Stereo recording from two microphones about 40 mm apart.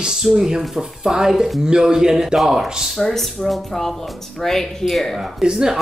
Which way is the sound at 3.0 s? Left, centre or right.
Centre.